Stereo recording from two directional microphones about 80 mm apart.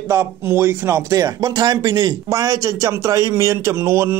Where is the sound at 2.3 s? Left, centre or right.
Right.